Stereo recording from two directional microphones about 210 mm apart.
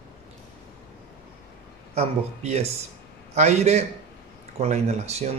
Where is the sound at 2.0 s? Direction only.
30° right (ahead or behind).